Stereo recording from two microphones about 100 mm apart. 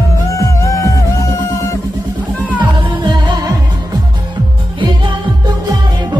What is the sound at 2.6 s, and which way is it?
Music, 50° right (ahead or behind).